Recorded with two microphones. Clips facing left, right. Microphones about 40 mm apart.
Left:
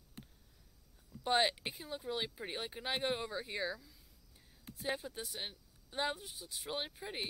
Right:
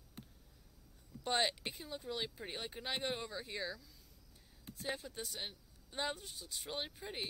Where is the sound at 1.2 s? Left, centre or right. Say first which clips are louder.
Left 3 dB; centre.